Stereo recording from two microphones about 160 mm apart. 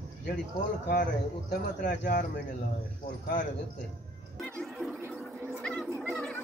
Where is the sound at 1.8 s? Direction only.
55° left (ahead or behind).